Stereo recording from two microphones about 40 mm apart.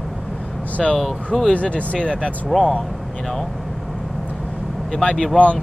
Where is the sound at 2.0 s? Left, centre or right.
Left.